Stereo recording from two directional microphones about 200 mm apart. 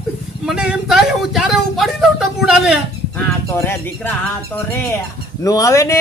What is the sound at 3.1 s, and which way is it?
Speech, 10° left (ahead or behind).